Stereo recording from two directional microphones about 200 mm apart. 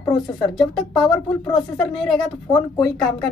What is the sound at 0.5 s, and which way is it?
A woman's voice, centre (ahead or behind).